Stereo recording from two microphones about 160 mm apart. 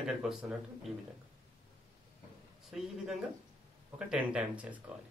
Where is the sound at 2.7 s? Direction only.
5° right (ahead or behind).